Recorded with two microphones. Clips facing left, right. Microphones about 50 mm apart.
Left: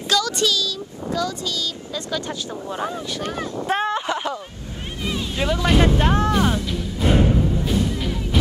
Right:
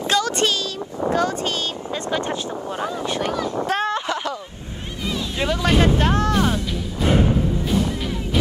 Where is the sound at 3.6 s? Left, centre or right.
Centre.